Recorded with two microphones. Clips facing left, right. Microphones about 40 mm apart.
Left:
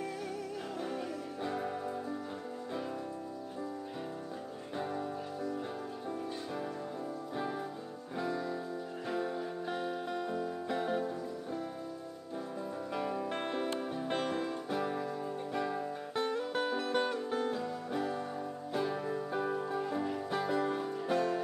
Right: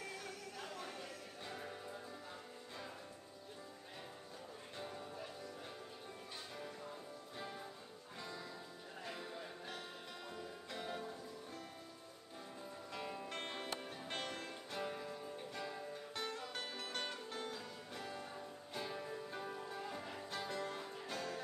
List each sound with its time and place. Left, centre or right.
1.4 s music: left
4.7 s music: left
7.3 s music: centre
12.9 s music: centre